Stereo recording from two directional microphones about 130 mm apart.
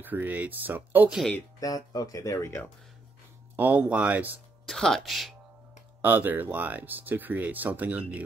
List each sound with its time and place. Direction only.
0.0 s speech: 15° right (ahead or behind)
1.6 s speech: 30° left (ahead or behind)
3.5 s speech: 10° right (ahead or behind)
4.6 s speech: 5° left (ahead or behind)
6.0 s speech: 15° right (ahead or behind)